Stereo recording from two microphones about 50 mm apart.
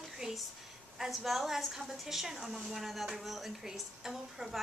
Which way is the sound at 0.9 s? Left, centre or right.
Centre.